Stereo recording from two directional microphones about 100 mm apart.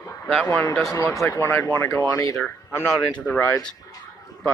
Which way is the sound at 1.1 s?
30° left (ahead or behind).